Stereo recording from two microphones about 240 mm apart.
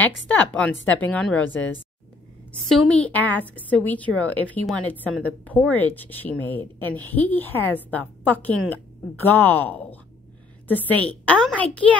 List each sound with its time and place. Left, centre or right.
0.3 s a woman's voice: centre